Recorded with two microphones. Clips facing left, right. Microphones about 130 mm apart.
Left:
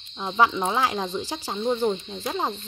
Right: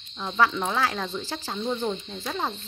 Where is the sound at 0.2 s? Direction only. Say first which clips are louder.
Left 2 dB; 15° left (ahead or behind).